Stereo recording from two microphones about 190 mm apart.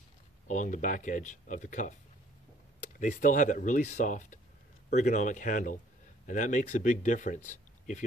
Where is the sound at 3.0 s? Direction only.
40° left (ahead or behind).